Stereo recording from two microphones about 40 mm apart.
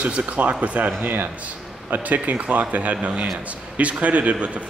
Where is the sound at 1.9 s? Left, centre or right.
Right.